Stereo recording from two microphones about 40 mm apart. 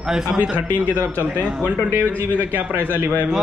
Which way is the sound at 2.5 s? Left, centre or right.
Right.